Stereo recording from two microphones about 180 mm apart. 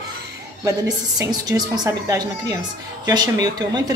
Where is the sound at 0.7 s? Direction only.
20° right (ahead or behind).